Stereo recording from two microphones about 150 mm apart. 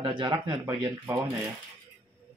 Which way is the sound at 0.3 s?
20° right (ahead or behind).